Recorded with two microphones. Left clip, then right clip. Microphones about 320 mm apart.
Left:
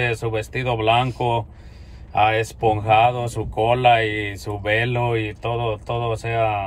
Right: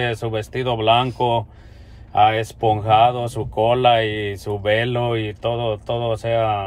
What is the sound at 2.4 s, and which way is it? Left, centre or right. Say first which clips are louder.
Speech: right 1 dB; right.